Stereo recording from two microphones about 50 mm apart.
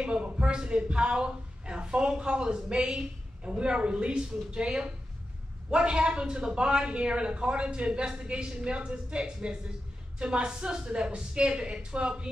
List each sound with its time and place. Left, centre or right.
0.0 s a man's voice: right